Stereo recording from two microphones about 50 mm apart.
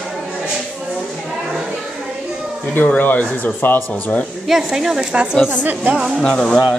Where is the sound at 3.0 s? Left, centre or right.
Left.